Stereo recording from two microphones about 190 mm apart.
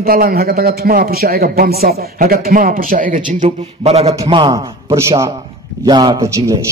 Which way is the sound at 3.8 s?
30° right (ahead or behind).